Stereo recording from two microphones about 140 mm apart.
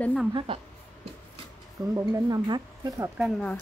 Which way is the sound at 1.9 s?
25° right (ahead or behind).